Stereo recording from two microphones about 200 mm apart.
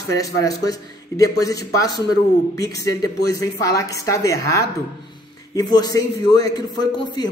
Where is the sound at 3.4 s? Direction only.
15° left (ahead or behind).